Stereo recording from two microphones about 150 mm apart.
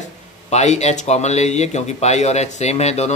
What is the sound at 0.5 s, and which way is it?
Speech, 50° left (ahead or behind).